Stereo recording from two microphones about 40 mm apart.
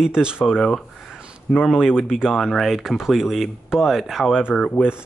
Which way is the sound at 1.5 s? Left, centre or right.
Centre.